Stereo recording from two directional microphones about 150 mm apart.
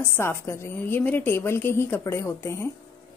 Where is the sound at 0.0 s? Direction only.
15° left (ahead or behind).